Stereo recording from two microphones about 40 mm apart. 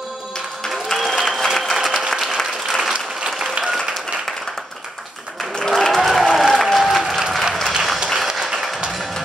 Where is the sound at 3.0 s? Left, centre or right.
Centre.